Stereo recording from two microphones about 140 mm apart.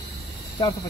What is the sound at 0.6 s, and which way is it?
Speech, 30° left (ahead or behind).